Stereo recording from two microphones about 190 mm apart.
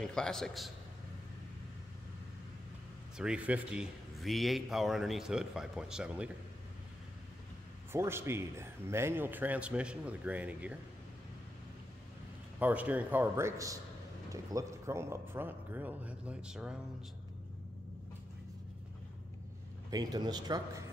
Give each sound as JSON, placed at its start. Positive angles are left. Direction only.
{"t": 0.0, "sound": "speech", "side_deg": 5}
{"t": 3.2, "sound": "speech", "side_deg": -5}
{"t": 7.9, "sound": "a man's voice", "side_deg": -15}
{"t": 12.5, "sound": "a man's voice", "side_deg": -10}
{"t": 19.9, "sound": "speech", "side_deg": -20}